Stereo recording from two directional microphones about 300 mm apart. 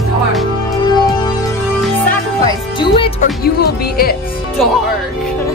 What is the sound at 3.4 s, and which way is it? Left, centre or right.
Speech, left.